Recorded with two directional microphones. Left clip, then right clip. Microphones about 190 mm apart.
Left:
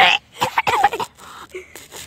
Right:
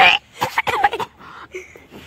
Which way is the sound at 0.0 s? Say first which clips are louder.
Right 1 dB; 20° left (ahead or behind).